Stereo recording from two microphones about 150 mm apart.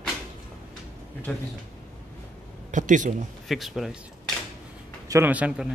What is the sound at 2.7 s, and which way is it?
Speech, 60° right (ahead or behind).